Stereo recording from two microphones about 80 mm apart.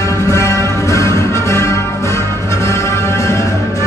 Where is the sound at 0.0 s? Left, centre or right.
Left.